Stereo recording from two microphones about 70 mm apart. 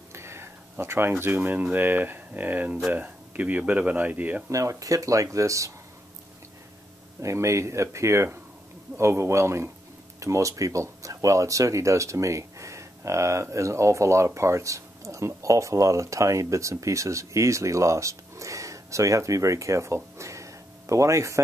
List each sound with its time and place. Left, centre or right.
0.1 s speech: right
4.5 s speech: right
7.2 s a man's voice: right